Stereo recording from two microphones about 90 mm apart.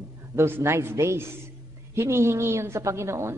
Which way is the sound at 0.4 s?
30° right (ahead or behind).